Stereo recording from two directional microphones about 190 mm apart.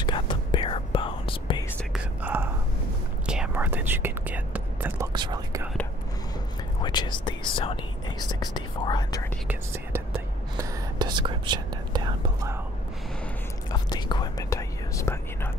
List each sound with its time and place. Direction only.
0.0 s whispering: 25° left (ahead or behind)
1.9 s whispering: 10° right (ahead or behind)
5.1 s whispering: 20° right (ahead or behind)
6.8 s whispering: 25° left (ahead or behind)
10.6 s whispering: 25° right (ahead or behind)
13.7 s whispering: 20° left (ahead or behind)